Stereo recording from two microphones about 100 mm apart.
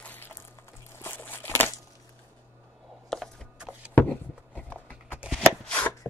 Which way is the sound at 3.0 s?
5° left (ahead or behind).